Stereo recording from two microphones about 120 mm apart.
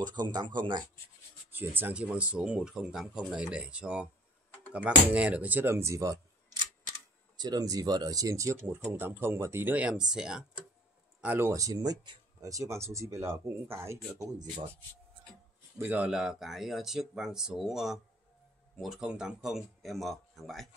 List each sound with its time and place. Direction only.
0.0 s speech: 35° right (ahead or behind)
1.5 s speech: 15° right (ahead or behind)
11.3 s speech: 25° right (ahead or behind)
15.8 s speech: 15° right (ahead or behind)